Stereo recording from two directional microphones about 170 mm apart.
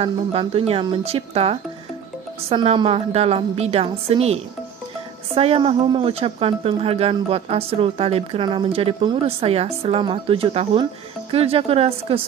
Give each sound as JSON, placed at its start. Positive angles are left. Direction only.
{"t": 0.0, "sound": "speech", "side_deg": -35}